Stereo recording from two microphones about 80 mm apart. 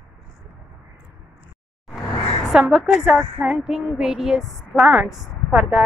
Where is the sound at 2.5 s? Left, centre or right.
Centre.